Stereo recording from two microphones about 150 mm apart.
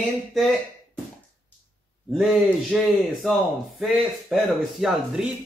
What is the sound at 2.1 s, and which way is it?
Speech, centre (ahead or behind).